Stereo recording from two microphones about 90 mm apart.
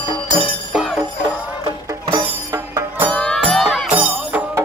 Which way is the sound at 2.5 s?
30° right (ahead or behind).